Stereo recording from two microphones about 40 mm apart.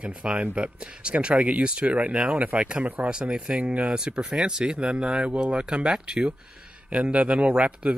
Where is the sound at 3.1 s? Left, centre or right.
Right.